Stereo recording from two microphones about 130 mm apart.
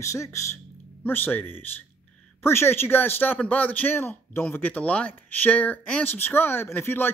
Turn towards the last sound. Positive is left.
turn(degrees=15)  # may be behind; listen again after turning